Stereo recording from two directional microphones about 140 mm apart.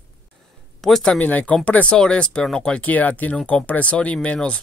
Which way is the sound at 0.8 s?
Centre (ahead or behind).